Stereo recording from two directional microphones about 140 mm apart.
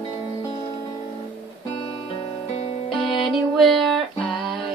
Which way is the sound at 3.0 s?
40° left (ahead or behind).